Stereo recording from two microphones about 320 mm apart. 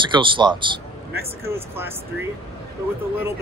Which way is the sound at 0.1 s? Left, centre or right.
Centre.